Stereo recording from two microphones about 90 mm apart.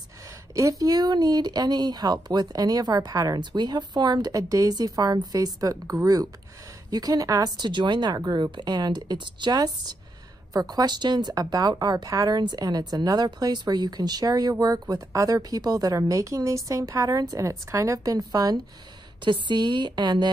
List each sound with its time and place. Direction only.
0.6 s speech: 40° right (ahead or behind)
4.3 s a woman's voice: 40° right (ahead or behind)
7.5 s a woman's voice: 55° right (ahead or behind)
19.2 s a woman's voice: 60° right (ahead or behind)